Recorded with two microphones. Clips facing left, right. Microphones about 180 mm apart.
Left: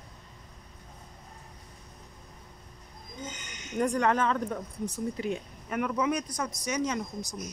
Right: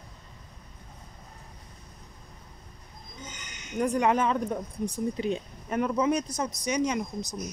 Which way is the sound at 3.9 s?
15° right (ahead or behind).